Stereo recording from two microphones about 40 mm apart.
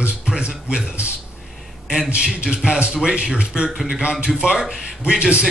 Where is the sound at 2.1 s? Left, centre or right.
Right.